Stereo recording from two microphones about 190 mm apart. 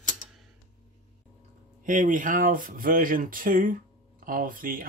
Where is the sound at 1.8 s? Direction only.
40° right (ahead or behind).